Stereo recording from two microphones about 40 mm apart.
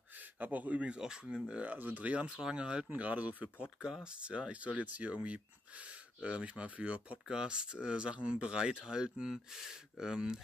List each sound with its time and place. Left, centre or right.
0.4 s speech: right
1.0 s speech: right
1.6 s speech: right
2.1 s speech: right
2.9 s speech: right
3.8 s speech: centre